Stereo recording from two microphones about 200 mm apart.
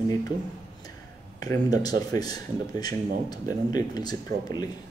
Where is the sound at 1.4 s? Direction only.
20° left (ahead or behind).